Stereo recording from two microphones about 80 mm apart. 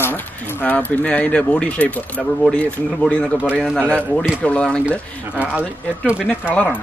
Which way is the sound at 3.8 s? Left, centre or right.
Centre.